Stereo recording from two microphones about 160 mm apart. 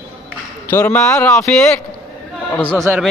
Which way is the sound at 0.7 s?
10° left (ahead or behind).